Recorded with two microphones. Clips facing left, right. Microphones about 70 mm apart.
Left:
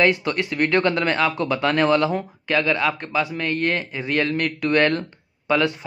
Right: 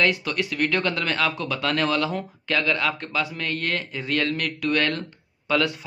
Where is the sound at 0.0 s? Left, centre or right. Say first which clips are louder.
Left 4 dB; left.